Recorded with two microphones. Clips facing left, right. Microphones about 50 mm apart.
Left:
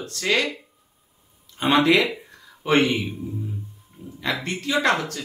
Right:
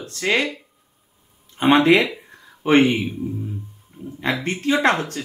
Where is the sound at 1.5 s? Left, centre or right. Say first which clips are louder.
Right 3 dB; right.